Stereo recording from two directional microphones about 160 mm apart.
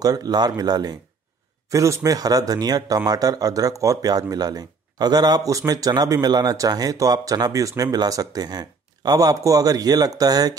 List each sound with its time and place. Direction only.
0.0 s speech: 25° right (ahead or behind)